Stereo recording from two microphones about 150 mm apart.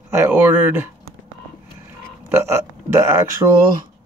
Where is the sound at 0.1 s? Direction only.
15° right (ahead or behind).